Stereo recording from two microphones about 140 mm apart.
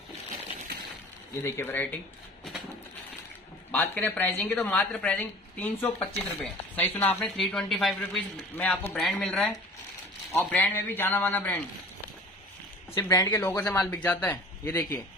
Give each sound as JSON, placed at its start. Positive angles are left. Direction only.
{"t": 1.4, "sound": "speech", "side_deg": 15}
{"t": 3.7, "sound": "speech", "side_deg": 10}
{"t": 12.9, "sound": "speech", "side_deg": 20}